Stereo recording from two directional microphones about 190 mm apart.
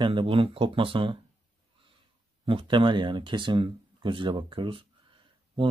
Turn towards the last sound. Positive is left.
turn(degrees=-25)  # may be behind; listen again after turning